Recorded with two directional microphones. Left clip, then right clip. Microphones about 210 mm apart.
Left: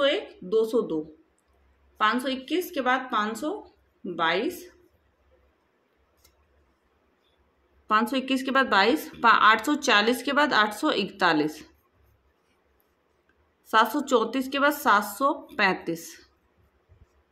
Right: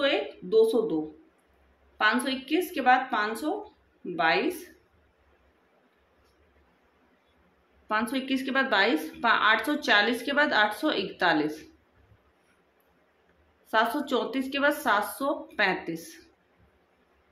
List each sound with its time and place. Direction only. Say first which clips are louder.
0.0 s speech: left 2 dB; 25° left (ahead or behind)
2.0 s speech: left 1 dB; 25° left (ahead or behind)
7.8 s a woman's voice: left 5 dB; 30° left (ahead or behind)
13.7 s speech: left 4 dB; 30° left (ahead or behind)